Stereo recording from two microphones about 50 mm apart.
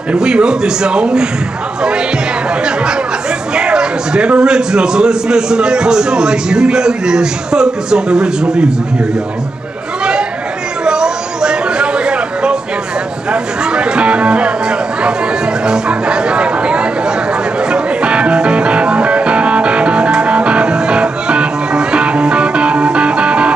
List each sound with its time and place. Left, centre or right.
0.2 s a man's voice: centre
10.9 s a sound: centre
13.3 s music: centre